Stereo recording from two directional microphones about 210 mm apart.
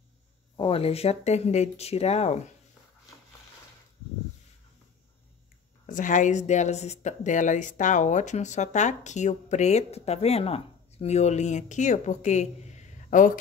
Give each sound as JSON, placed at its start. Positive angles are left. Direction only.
{"t": 0.6, "sound": "speech", "side_deg": 25}
{"t": 5.9, "sound": "speech", "side_deg": 40}